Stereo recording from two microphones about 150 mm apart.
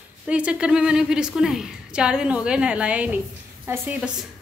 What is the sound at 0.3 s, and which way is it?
A woman's voice, 10° right (ahead or behind).